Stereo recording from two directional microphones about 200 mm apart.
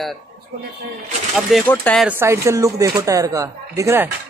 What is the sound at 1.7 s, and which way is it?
Speech, 5° left (ahead or behind).